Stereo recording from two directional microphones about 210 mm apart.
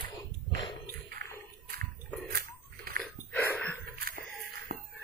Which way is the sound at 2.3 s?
45° right (ahead or behind).